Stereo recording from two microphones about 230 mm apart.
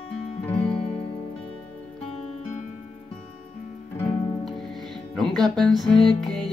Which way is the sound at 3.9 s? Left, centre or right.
Centre.